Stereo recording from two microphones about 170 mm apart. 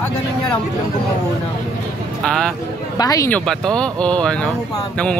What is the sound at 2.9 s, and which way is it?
Speech, 20° left (ahead or behind).